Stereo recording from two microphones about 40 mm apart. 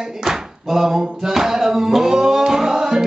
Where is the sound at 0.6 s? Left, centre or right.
Centre.